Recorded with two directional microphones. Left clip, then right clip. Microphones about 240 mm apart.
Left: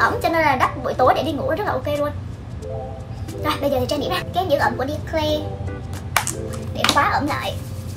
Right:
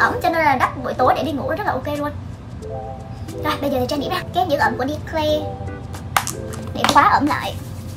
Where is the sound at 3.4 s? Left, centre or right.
Centre.